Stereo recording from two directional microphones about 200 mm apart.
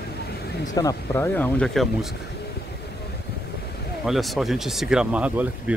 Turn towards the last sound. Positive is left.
turn(degrees=-5)  # may be behind; listen again after turning